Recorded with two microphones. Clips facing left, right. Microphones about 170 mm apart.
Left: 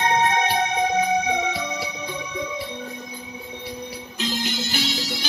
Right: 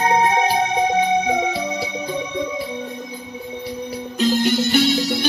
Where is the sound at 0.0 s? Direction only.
30° right (ahead or behind).